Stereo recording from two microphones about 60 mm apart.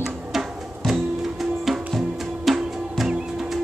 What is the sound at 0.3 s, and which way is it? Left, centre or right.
Music, centre.